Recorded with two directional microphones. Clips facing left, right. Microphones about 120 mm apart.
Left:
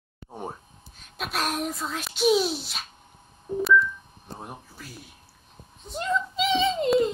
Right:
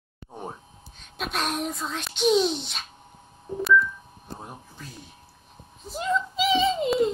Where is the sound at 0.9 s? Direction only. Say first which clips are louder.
Even; 5° left (ahead or behind).